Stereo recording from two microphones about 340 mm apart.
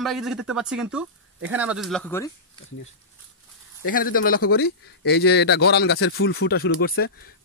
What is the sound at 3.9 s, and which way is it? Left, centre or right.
A man's voice, left.